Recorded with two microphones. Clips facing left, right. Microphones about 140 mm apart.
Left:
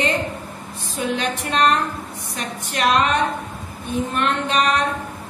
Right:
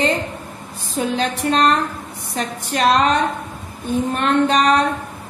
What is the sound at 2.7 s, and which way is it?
Speech, 35° right (ahead or behind).